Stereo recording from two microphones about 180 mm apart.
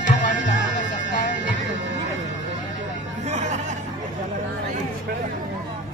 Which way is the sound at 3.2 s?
40° right (ahead or behind).